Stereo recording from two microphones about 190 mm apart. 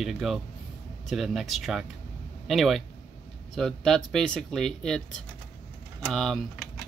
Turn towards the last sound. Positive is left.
turn(degrees=0)  # may be behind; listen again after turning